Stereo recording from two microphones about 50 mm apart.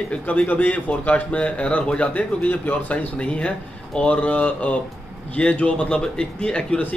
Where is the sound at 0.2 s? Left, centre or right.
Left.